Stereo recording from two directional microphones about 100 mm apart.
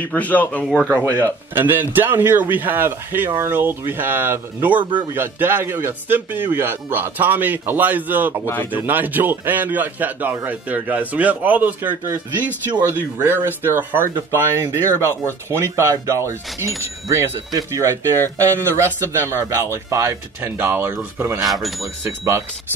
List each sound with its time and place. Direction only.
0.0 s speech: 15° left (ahead or behind)
0.7 s a man's voice: 15° right (ahead or behind)
21.4 s speech: centre (ahead or behind)